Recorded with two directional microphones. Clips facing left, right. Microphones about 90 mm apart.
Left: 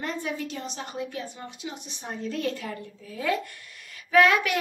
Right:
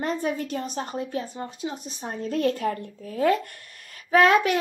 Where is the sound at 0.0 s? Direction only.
40° right (ahead or behind).